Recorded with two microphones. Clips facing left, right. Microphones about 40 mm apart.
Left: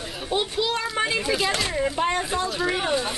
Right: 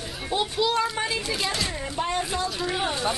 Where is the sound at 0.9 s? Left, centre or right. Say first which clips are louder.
Left 4 dB; centre.